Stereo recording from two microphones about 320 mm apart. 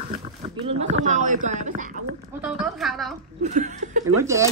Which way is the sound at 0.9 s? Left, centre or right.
Right.